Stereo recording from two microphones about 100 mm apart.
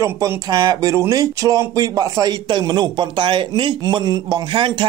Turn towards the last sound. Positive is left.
turn(degrees=-50)  # may be behind; listen again after turning